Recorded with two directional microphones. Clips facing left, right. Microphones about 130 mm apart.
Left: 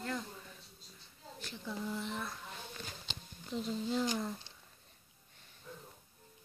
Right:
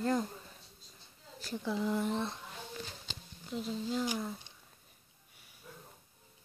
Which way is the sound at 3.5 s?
Centre (ahead or behind).